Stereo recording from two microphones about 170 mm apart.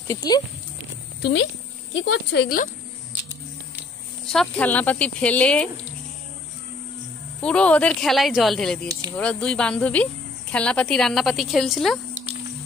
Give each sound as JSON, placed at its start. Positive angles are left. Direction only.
{"t": 0.1, "sound": "speech", "side_deg": 20}
{"t": 1.2, "sound": "speech", "side_deg": 90}
{"t": 4.3, "sound": "speech", "side_deg": 5}
{"t": 7.4, "sound": "a woman's voice", "side_deg": 5}